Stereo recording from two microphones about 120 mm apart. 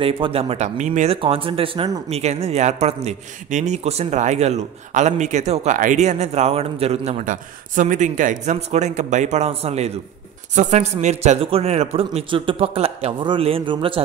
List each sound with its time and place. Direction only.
0.0 s speech: 50° right (ahead or behind); by 1.1 s 80° right
1.1 s speech: 50° right (ahead or behind)
10.5 s a man's voice: 75° right (ahead or behind); by 14.0 s 45° right (ahead or behind)